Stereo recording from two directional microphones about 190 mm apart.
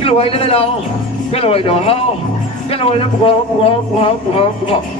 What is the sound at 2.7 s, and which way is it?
Music, 30° left (ahead or behind).